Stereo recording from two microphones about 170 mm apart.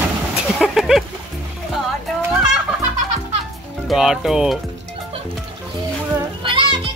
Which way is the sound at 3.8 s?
Centre (ahead or behind).